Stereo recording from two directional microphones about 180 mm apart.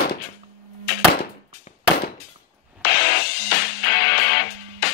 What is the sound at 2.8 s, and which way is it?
Music, 60° left (ahead or behind).